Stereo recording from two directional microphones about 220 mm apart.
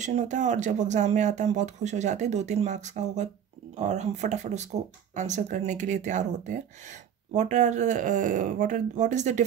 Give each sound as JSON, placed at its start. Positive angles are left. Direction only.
{"t": 0.0, "sound": "speech", "side_deg": -35}